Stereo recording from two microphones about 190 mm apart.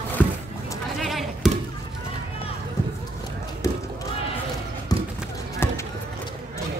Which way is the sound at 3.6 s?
15° left (ahead or behind).